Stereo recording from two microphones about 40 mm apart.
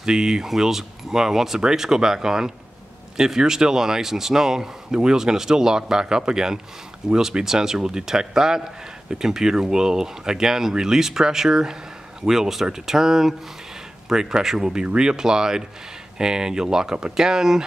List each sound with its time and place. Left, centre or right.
0.0 s speech: centre